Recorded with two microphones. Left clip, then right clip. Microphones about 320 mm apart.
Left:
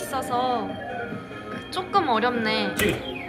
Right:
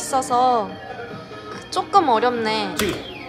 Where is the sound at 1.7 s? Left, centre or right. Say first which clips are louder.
Right 6 dB; centre.